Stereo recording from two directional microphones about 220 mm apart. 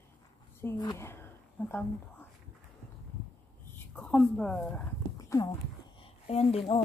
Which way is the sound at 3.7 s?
10° left (ahead or behind).